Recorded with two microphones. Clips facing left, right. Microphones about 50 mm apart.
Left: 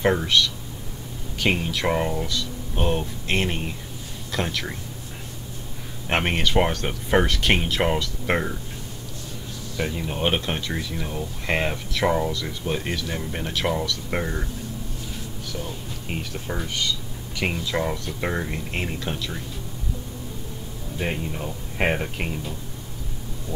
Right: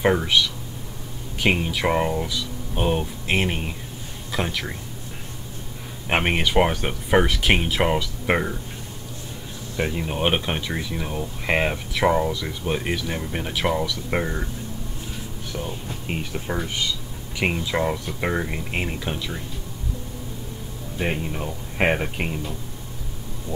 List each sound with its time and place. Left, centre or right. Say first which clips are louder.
0.0 s speech: right 1 dB; centre
6.0 s speech: right 1 dB; centre
9.8 s speech: right 1 dB; centre
15.5 s speech: right 3 dB; right
21.0 s speech: right 2 dB; centre